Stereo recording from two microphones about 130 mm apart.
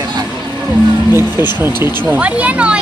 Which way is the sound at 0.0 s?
30° right (ahead or behind).